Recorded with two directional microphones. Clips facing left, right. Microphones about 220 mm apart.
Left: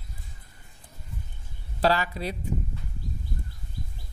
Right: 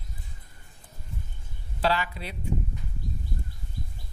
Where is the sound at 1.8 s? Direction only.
40° left (ahead or behind).